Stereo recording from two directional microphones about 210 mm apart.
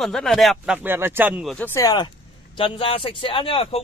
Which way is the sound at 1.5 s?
10° left (ahead or behind).